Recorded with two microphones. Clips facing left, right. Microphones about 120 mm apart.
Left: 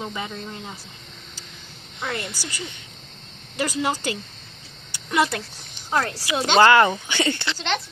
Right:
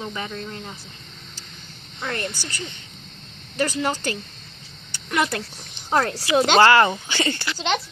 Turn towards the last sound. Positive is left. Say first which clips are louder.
# right 2 dB
turn(degrees=-15)  # may be behind; listen again after turning